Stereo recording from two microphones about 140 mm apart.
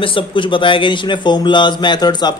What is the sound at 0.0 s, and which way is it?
A man's voice, 35° left (ahead or behind).